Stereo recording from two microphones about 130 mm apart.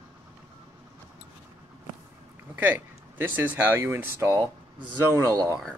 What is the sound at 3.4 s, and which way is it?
Speech, 15° right (ahead or behind).